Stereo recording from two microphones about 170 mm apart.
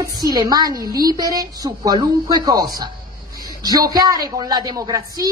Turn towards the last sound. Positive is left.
turn(degrees=-20)  # may be behind; listen again after turning